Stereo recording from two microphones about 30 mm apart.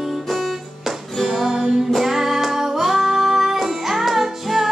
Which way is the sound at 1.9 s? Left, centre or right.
Centre.